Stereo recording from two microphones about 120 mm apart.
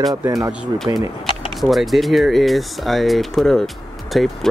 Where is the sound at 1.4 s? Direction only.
Centre (ahead or behind).